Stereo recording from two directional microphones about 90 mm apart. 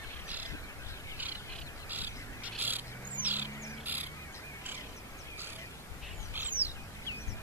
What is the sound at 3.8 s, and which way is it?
Crow, 20° right (ahead or behind).